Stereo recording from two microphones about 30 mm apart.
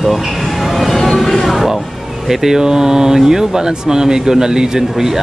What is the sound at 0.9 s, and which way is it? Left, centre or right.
Music, centre.